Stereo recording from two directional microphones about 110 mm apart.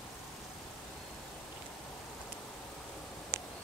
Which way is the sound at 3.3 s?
20° right (ahead or behind).